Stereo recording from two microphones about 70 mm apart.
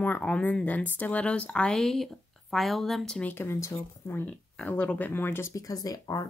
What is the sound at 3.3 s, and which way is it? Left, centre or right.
Speech, left.